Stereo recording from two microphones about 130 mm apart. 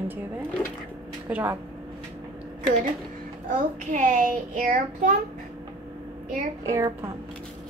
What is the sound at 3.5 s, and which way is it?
A child's voice, 85° right.